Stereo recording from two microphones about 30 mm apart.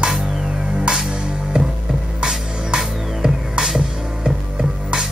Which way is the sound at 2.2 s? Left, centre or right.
Right.